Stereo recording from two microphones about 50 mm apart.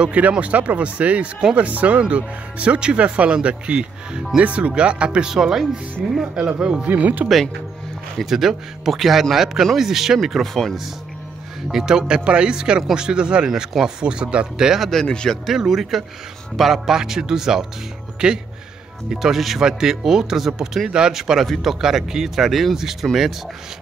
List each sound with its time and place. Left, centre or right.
0.0 s speech: right
5.3 s speech: centre
6.9 s speech: right
8.3 s speech: centre
11.7 s speech: centre
15.0 s speech: centre
15.4 s speech: centre
19.0 s speech: centre